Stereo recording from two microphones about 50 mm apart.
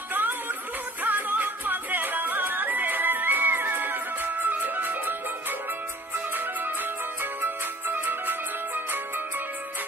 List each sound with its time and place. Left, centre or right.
0.1 s music: right
6.1 s music: right